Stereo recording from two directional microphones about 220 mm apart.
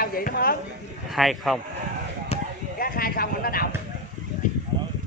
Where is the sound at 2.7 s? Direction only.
40° left (ahead or behind).